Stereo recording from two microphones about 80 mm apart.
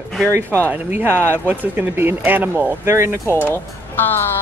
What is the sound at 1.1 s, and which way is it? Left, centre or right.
Speech, left.